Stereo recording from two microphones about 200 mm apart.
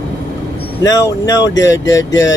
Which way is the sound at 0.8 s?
15° left (ahead or behind).